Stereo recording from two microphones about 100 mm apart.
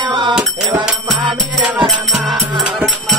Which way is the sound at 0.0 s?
50° right (ahead or behind).